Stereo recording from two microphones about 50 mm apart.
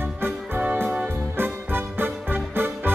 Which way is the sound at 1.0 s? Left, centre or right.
Right.